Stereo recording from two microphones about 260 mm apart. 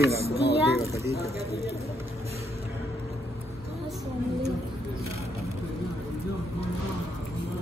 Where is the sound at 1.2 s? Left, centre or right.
Right.